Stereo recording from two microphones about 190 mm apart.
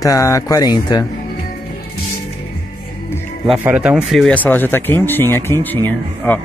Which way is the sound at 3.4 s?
5° right (ahead or behind).